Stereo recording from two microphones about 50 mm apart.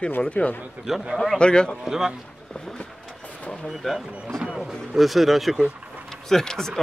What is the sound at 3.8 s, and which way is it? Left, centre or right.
Speech, centre.